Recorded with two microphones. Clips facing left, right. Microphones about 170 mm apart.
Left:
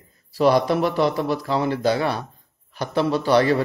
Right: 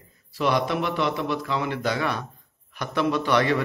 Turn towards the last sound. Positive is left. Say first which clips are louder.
# left 4 dB
turn(degrees=35)  # may be behind; listen again after turning